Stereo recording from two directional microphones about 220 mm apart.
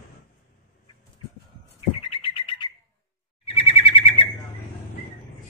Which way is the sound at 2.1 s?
25° left (ahead or behind).